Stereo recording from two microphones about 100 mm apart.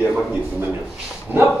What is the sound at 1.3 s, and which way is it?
Speech, 20° right (ahead or behind).